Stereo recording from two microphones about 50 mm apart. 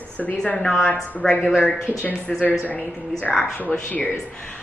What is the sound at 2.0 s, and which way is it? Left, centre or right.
A woman's voice, left.